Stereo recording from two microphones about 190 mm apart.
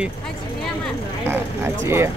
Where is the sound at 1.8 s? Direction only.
15° right (ahead or behind).